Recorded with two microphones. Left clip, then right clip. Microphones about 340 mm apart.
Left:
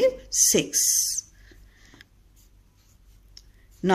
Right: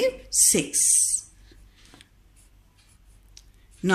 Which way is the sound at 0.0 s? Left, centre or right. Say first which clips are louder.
Left 2 dB; left.